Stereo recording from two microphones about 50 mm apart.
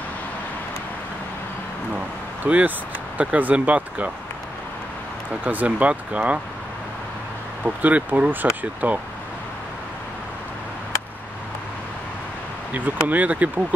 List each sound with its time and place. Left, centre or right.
2.4 s speech: right
5.4 s speech: right
7.6 s speech: right
13.1 s speech: right